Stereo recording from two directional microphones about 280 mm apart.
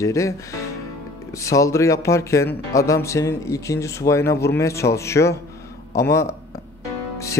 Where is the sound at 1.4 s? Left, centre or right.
Centre.